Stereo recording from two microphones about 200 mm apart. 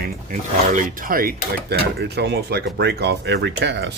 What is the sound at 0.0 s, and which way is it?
Speech, 40° right (ahead or behind).